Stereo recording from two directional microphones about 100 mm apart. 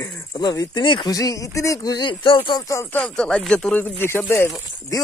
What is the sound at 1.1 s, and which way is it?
Speech, 35° left (ahead or behind).